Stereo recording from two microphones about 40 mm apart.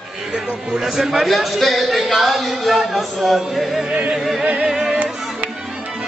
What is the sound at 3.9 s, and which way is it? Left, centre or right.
Music, right.